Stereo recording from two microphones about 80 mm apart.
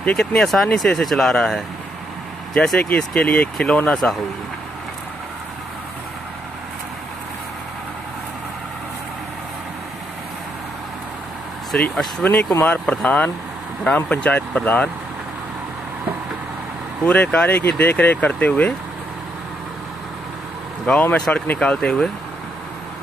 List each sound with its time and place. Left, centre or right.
0.0 s speech: centre
11.9 s speech: centre
12.5 s speech: left
12.8 s speech: centre
17.0 s speech: centre
20.9 s speech: centre